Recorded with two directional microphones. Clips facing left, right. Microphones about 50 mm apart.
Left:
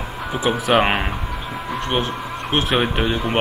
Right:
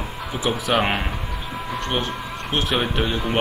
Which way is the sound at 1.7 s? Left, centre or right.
Centre.